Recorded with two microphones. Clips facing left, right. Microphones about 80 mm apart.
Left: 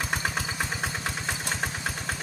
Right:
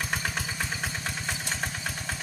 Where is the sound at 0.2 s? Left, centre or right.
Left.